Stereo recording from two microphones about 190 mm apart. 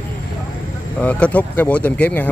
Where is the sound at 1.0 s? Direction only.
10° left (ahead or behind).